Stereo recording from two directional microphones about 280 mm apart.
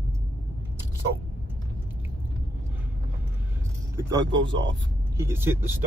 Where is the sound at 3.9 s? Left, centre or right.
Centre.